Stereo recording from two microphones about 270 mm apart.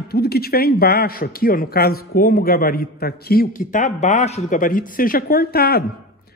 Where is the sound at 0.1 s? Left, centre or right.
Left.